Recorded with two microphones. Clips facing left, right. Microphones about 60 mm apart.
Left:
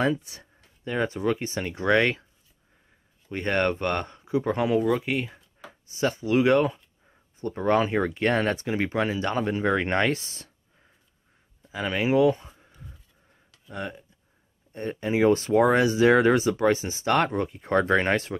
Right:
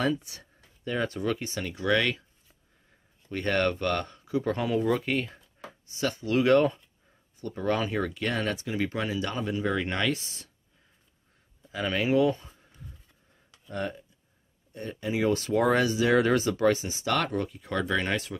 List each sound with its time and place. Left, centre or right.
0.3 s speech: left
3.3 s speech: left
4.8 s speech: centre
5.9 s speech: left
11.7 s a sound: centre
13.7 s speech: centre
14.7 s speech: left